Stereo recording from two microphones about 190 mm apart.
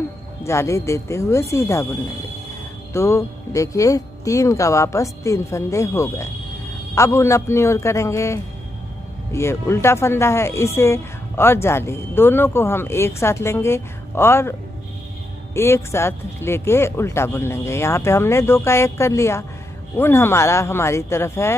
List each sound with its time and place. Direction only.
0.5 s speech: 15° left (ahead or behind)
2.9 s speech: 15° left (ahead or behind)
15.5 s speech: 15° left (ahead or behind)